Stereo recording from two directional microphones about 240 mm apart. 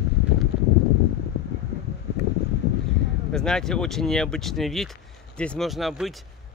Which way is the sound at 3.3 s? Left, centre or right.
Centre.